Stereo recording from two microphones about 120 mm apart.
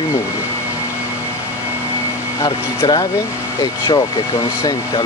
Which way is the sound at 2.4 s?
35° left (ahead or behind).